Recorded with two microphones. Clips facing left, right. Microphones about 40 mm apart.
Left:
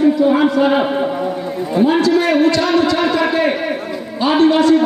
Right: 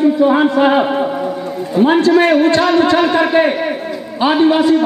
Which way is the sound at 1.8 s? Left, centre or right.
Right.